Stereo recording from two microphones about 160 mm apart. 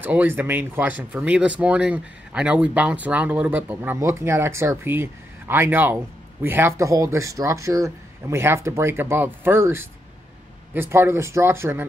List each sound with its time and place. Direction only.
0.0 s speech: 10° right (ahead or behind)